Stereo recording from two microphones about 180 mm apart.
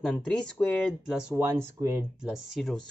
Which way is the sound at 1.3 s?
15° right (ahead or behind).